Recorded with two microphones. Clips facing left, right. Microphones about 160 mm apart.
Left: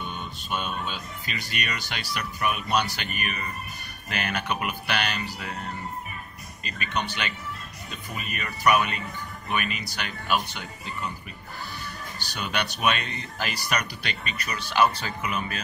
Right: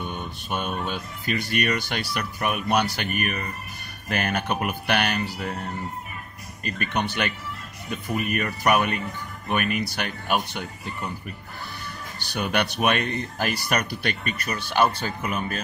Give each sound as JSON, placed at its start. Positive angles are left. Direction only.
{"t": 0.0, "sound": "speech", "side_deg": -50}
{"t": 6.6, "sound": "speech", "side_deg": -55}
{"t": 12.2, "sound": "speech", "side_deg": -55}